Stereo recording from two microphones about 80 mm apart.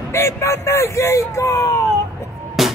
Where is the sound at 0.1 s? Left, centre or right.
Left.